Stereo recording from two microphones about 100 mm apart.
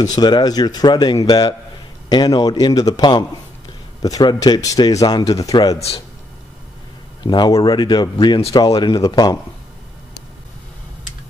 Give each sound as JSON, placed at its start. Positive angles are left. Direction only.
{"t": 0.0, "sound": "a man's voice", "side_deg": 40}
{"t": 7.2, "sound": "a man's voice", "side_deg": 45}